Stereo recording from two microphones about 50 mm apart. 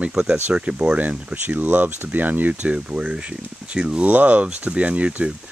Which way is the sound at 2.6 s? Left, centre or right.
Right.